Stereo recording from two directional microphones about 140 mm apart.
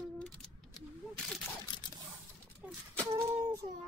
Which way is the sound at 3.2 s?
20° right (ahead or behind).